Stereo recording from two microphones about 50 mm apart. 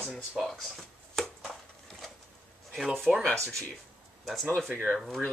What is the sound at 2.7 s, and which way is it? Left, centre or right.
Speech, centre.